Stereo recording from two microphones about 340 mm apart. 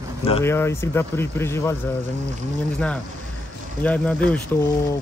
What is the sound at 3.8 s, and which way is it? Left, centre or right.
Speech, centre.